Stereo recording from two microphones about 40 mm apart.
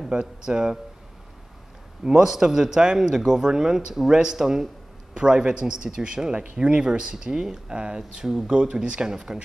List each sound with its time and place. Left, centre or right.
0.1 s speech: right
2.0 s speech: centre